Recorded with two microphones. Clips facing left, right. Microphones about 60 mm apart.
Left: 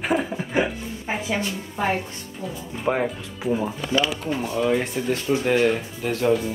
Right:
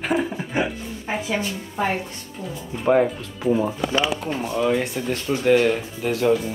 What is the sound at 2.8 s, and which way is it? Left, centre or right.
Speech, centre.